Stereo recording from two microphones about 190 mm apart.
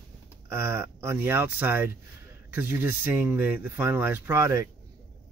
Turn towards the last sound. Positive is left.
turn(degrees=-15)  # may be behind; listen again after turning